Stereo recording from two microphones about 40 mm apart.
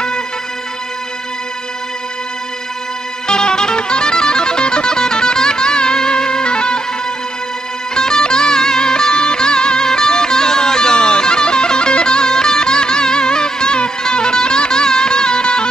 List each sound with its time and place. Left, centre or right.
3.3 s music: centre
7.9 s music: centre